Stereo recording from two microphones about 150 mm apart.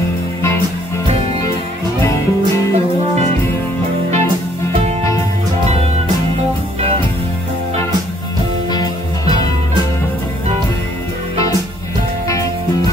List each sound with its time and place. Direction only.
2.0 s music: 20° left (ahead or behind)